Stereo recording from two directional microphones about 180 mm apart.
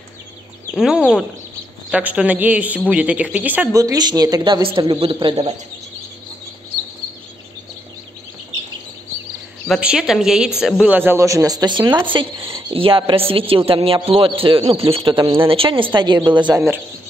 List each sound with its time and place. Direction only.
0.7 s a woman's voice: 5° right (ahead or behind); by 5.5 s 30° right (ahead or behind)
9.7 s a woman's voice: 5° right (ahead or behind); by 16.6 s 25° right (ahead or behind)